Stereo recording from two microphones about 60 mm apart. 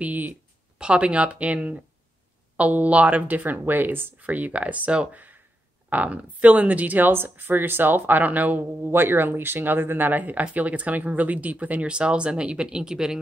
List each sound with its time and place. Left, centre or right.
0.0 s speech: right
0.7 s speech: centre